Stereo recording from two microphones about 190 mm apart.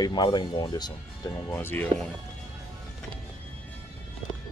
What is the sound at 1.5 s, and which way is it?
Speech, 10° left (ahead or behind).